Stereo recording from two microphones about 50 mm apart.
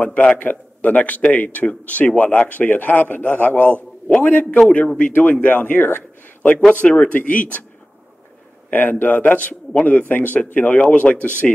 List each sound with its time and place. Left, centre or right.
0.0 s speech: left
6.7 s speech: left
8.6 s a man's voice: left
11.4 s speech: centre